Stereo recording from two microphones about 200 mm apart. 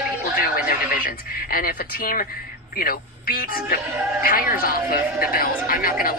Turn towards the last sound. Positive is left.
turn(degrees=45)  # may be behind; listen again after turning